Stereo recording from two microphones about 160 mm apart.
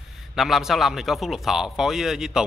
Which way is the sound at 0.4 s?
Centre (ahead or behind).